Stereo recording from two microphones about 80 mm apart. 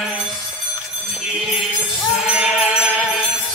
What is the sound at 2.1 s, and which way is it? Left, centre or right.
Sheep, centre.